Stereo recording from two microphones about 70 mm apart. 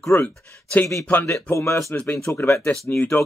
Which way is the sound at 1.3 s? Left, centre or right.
Left.